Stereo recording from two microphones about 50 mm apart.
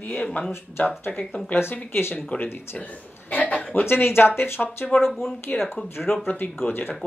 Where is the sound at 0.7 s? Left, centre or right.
Left.